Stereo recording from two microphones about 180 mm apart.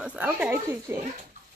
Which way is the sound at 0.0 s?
10° right (ahead or behind).